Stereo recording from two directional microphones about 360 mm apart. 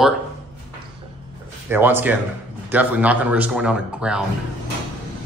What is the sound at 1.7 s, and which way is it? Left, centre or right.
Speech, centre.